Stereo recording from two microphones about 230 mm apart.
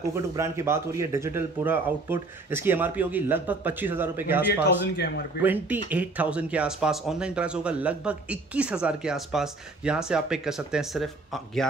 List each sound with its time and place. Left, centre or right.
0.1 s speech: centre
4.9 s speech: left
5.4 s speech: centre